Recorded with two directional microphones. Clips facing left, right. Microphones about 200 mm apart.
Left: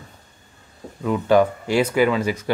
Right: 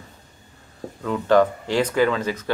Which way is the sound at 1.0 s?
15° left (ahead or behind).